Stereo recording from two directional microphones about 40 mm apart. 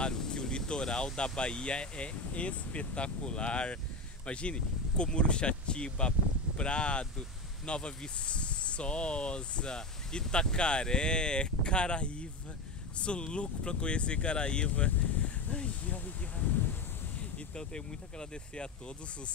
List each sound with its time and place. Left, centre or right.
0.0 s speech: left
17.6 s speech: centre